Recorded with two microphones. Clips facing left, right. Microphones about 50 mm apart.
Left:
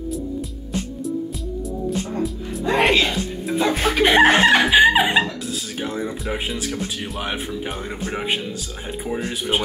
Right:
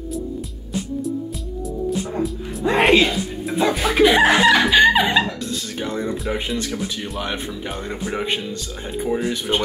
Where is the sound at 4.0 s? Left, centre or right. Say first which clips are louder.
Even; left.